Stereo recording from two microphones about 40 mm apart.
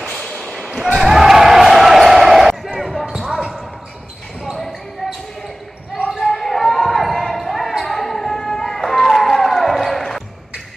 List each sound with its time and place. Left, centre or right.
0.0 s basketball bounce: centre
3.2 s basketball bounce: centre
4.5 s basketball bounce: centre
6.2 s basketball bounce: centre
7.8 s a sound: centre